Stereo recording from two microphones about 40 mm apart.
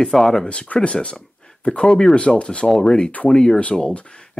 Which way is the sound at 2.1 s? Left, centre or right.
Left.